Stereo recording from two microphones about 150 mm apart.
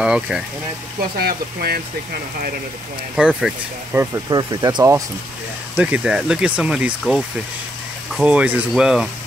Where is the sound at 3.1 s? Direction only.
5° right (ahead or behind).